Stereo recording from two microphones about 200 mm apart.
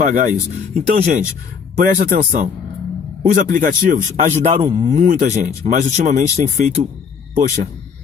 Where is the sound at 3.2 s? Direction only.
40° right (ahead or behind).